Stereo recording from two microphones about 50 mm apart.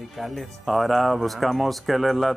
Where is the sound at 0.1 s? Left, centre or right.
Centre.